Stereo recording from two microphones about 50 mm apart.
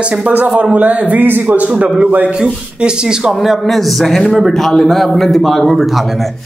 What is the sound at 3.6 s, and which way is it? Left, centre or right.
A man's voice, centre.